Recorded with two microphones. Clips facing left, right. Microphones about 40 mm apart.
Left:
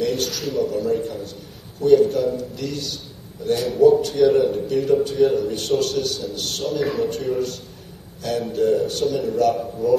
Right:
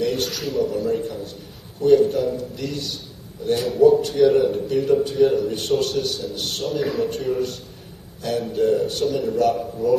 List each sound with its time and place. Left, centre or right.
0.0 s a man's voice: centre
6.6 s a man's voice: centre